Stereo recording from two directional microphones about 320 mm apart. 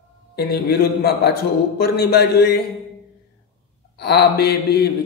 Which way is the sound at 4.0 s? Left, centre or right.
Left.